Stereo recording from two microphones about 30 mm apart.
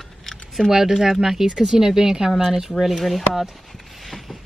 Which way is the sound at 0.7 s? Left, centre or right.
Centre.